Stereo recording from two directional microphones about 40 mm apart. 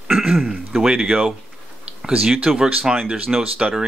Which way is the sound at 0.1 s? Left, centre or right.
Centre.